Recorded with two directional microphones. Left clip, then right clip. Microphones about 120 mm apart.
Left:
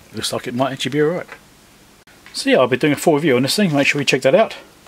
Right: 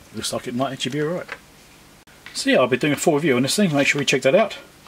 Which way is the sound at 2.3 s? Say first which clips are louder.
Left 3 dB; 25° left (ahead or behind).